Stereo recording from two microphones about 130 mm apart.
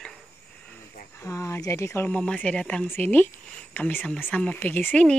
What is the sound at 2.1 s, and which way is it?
Speech, 10° left (ahead or behind).